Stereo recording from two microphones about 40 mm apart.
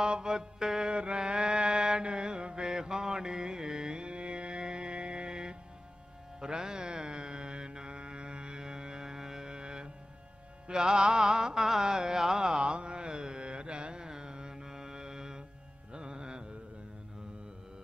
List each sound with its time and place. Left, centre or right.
0.0 s mantra: right
10.7 s music: centre